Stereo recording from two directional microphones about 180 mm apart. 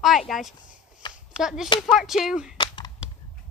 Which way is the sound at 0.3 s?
Centre (ahead or behind).